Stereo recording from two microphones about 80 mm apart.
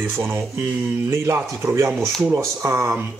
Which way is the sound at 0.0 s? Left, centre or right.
Right.